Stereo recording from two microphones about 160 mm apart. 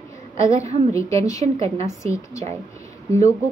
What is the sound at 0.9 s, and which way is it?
Speech, 20° left (ahead or behind).